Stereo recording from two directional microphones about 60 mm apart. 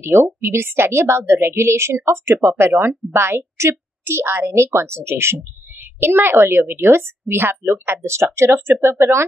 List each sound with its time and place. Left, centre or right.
0.0 s a woman's voice: right